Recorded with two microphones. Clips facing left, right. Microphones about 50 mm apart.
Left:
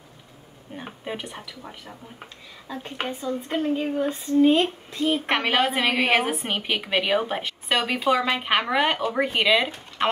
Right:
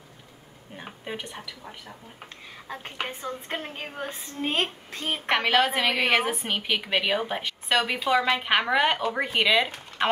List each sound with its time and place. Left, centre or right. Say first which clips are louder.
0.7 s speech: left 3 dB; centre
3.1 s a woman's voice: left 5 dB; right
5.2 s a woman's voice: right 5 dB; centre